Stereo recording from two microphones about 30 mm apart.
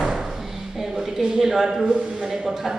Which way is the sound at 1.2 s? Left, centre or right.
Centre.